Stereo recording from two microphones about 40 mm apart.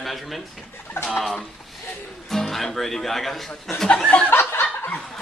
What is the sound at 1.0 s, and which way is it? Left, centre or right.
Speech, left.